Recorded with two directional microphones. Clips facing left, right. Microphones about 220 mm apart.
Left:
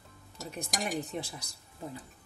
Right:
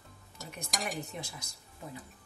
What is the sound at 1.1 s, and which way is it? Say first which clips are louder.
Speech: left 5 dB; 35° left (ahead or behind).